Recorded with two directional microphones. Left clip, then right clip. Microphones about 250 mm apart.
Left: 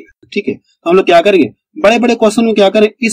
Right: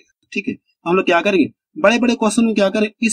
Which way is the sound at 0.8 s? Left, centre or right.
Centre.